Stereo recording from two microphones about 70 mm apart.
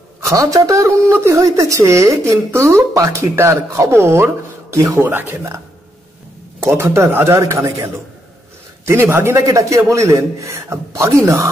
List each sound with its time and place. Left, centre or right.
0.2 s a woman's voice: right
6.6 s speech: right
8.8 s speech: right
9.5 s a woman's voice: right